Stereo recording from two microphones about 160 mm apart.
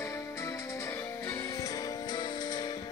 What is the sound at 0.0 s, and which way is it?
Music, 15° left (ahead or behind).